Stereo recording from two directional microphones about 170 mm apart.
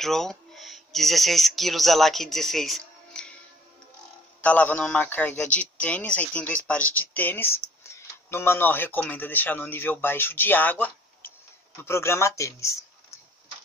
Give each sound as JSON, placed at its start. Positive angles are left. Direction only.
{"t": 0.0, "sound": "speech", "side_deg": 0}
{"t": 4.4, "sound": "a man's voice", "side_deg": 10}